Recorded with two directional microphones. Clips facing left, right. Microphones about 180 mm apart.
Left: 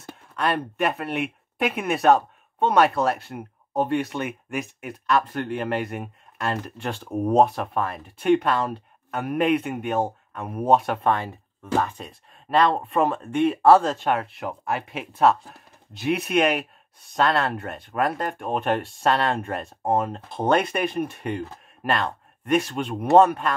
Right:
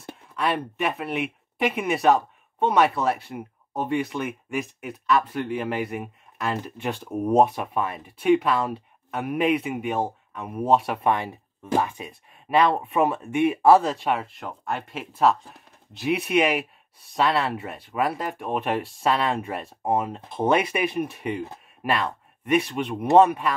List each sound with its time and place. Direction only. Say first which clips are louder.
0.4 s speech: left 1 dB; centre (ahead or behind)
11.1 s speech: right 1 dB; 15° right (ahead or behind)